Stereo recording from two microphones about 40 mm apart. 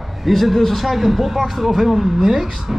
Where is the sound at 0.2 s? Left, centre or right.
Centre.